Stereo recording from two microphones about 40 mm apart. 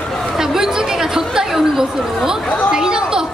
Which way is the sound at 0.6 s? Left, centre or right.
Centre.